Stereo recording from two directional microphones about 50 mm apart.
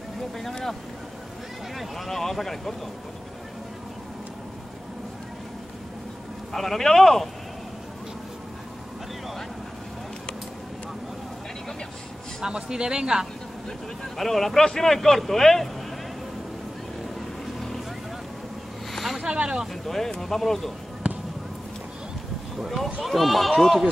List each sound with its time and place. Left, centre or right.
0.4 s speech: centre
1.8 s speech: centre
6.5 s speech: centre
12.4 s speech: centre
14.1 s speech: centre
17.6 s vehicle: centre
18.9 s a sound: centre
19.3 s vehicle: centre
19.6 s speech: centre
23.0 s speech: centre